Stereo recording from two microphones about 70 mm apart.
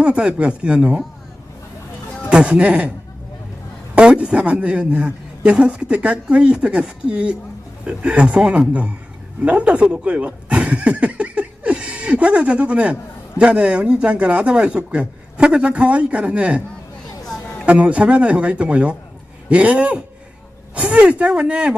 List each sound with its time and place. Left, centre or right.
0.0 s a man's voice: centre
2.2 s a man's voice: centre
3.9 s a man's voice: centre
17.6 s a man's voice: centre